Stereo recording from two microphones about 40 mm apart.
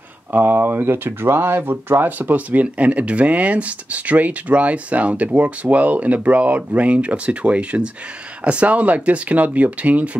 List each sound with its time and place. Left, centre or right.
0.3 s speech: right